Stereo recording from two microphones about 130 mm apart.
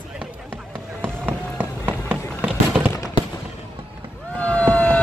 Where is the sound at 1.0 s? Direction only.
15° right (ahead or behind).